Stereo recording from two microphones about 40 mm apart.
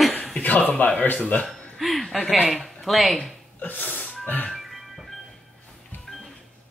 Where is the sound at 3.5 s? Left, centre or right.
Left.